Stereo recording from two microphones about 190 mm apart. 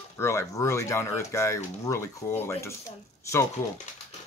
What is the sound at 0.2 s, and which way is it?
Speech, 15° left (ahead or behind).